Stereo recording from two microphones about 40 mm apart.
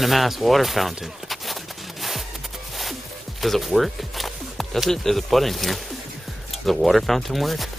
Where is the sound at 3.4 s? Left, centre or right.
Centre.